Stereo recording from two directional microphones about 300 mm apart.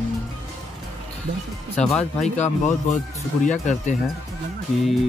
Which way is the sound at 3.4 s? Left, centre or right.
Left.